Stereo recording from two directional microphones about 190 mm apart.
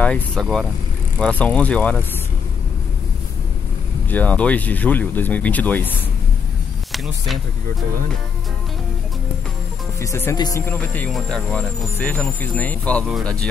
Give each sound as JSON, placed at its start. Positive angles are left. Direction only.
{"t": 0.0, "sound": "speech", "side_deg": 5}
{"t": 4.1, "sound": "speech", "side_deg": 10}
{"t": 9.9, "sound": "speech", "side_deg": 15}
{"t": 10.7, "sound": "speech", "side_deg": 5}